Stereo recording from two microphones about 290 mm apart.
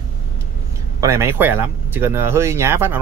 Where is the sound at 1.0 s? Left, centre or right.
Centre.